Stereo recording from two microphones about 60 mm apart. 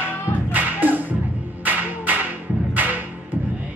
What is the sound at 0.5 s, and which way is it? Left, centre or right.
Music, right.